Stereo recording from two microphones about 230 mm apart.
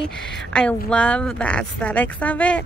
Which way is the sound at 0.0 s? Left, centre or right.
Centre.